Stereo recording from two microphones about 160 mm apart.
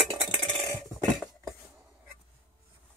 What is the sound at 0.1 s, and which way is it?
Cutlery, 30° right (ahead or behind).